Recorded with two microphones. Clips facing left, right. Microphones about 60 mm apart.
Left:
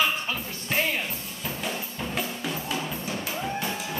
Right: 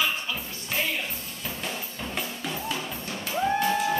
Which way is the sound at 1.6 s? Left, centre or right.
Centre.